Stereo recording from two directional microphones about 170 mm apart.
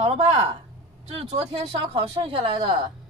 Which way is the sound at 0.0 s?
35° right (ahead or behind).